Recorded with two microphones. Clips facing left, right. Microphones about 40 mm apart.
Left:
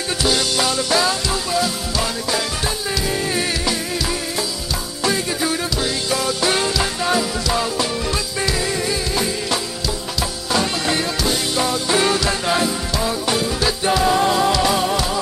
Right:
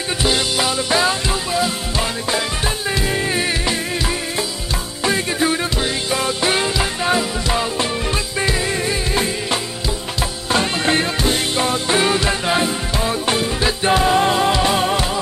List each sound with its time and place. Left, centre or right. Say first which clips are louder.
0.2 s music: even; centre
5.0 s music: right 2 dB; right
8.4 s music: right 2 dB; right
12.0 s music: right 1 dB; centre